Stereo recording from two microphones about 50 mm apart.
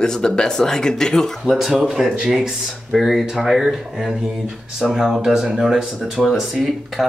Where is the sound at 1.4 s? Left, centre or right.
Centre.